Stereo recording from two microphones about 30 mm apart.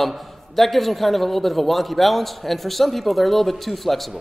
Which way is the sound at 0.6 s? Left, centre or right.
Centre.